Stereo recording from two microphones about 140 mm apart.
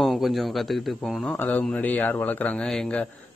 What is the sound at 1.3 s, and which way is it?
A man's voice, 10° left (ahead or behind).